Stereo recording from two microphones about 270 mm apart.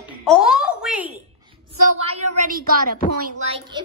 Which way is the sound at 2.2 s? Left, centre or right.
Right.